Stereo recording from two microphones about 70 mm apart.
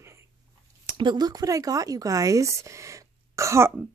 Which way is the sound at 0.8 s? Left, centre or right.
Right.